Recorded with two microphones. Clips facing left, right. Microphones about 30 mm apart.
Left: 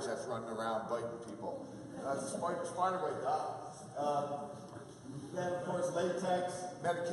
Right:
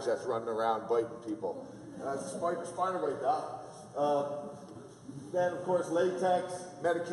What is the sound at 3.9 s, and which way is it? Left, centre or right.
Speech, centre.